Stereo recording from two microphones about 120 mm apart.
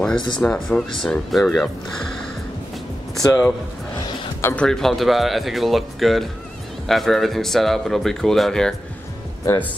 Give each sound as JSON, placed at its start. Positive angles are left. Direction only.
{"t": 0.4, "sound": "speech", "side_deg": 5}
{"t": 3.2, "sound": "speech", "side_deg": 25}
{"t": 4.6, "sound": "speech", "side_deg": 5}